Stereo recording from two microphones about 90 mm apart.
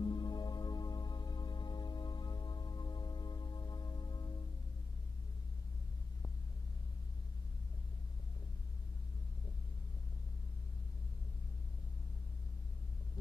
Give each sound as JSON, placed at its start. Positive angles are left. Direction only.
{"t": 0.0, "sound": "music", "side_deg": 55}